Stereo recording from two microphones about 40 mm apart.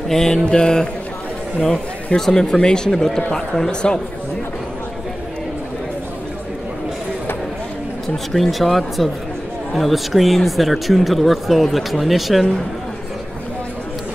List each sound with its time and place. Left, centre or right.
0.1 s speech: centre
0.5 s mantra: centre
2.1 s speech: centre
8.3 s speech: centre